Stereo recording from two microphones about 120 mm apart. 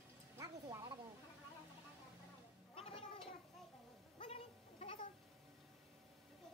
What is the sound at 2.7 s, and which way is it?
Gargling, 50° left (ahead or behind).